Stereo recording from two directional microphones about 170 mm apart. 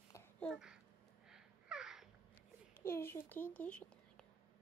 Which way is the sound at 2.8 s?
15° left (ahead or behind).